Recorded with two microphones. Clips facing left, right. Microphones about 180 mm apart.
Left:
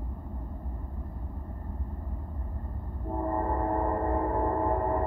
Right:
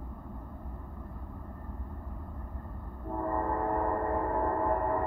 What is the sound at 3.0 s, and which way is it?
Train, 20° left (ahead or behind).